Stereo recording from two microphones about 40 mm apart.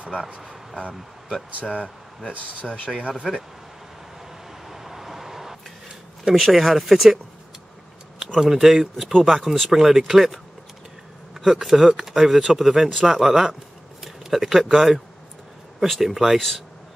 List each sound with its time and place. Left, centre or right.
2.6 s speech: left
4.6 s vehicle: centre
6.3 s speech: centre
8.4 s speech: centre